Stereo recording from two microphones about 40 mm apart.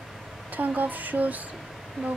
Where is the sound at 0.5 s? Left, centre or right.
Right.